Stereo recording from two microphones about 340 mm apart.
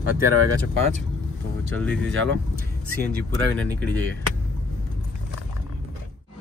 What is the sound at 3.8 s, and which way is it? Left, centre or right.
Speech, centre.